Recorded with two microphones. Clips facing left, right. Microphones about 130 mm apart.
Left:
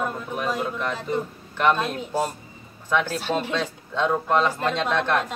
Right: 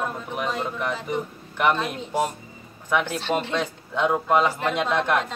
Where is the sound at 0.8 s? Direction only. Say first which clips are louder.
Left 1 dB; 15° right (ahead or behind).